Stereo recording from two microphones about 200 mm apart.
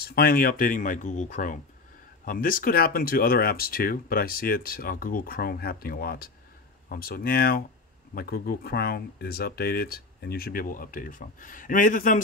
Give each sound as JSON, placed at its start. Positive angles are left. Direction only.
{"t": 0.0, "sound": "speech", "side_deg": 50}